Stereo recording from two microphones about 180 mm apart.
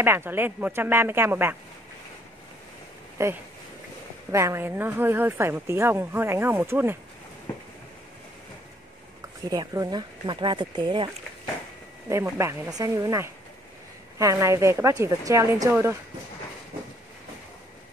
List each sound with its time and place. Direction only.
0.0 s speech: 15° right (ahead or behind)
3.2 s speech: 15° right (ahead or behind)
9.2 s speech: 20° right (ahead or behind)
12.1 s speech: 15° right (ahead or behind)